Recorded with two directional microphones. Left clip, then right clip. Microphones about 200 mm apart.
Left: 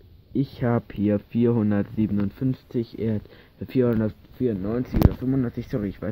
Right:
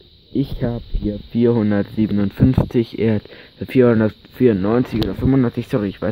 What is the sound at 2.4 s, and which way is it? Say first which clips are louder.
Speech: right 10 dB; 35° right (ahead or behind).